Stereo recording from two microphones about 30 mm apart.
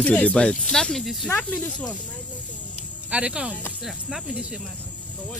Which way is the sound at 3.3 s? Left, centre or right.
Right.